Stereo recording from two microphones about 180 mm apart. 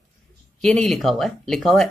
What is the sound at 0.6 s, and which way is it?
Speech, centre (ahead or behind).